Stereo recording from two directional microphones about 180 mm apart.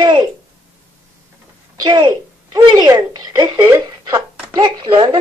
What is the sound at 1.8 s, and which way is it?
Speech, 25° right (ahead or behind).